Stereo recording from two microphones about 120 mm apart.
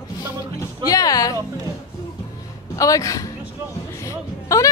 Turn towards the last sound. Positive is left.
turn(degrees=25)  # may be behind; listen again after turning